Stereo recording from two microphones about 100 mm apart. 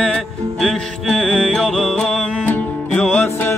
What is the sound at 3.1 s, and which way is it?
Music, 20° left (ahead or behind).